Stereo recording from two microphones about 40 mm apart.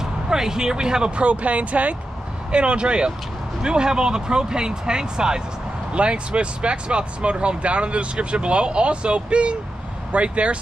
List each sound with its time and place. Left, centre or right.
0.0 s speech: centre; by 2.0 s right
2.5 s speech: right
5.9 s speech: right